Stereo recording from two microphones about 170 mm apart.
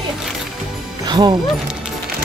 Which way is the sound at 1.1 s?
25° right (ahead or behind).